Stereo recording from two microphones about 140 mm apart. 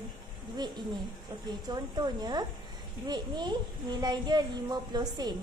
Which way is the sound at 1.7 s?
30° right (ahead or behind).